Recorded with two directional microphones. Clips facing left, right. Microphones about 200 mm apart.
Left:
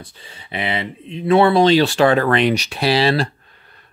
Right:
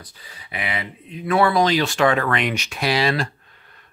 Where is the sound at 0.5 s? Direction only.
30° left (ahead or behind).